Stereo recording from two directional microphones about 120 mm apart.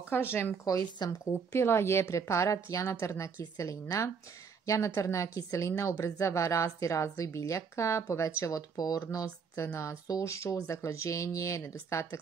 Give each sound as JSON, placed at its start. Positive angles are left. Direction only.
{"t": 0.1, "sound": "speech", "side_deg": 20}